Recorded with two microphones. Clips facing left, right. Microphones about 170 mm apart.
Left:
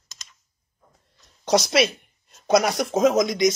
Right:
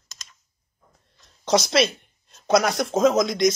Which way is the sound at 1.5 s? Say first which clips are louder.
Even; centre (ahead or behind).